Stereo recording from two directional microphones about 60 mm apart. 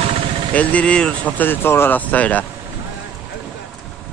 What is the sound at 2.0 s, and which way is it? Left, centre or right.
Speech, left.